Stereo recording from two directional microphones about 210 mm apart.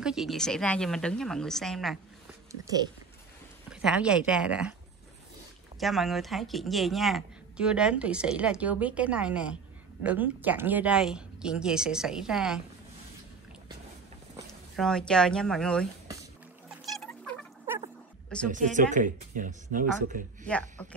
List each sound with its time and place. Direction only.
0.0 s speech: centre (ahead or behind)
3.7 s speech: 5° right (ahead or behind)
5.8 s speech: centre (ahead or behind)
14.8 s speech: 5° left (ahead or behind)
16.9 s rodents: centre (ahead or behind)
18.5 s speech: 35° right (ahead or behind)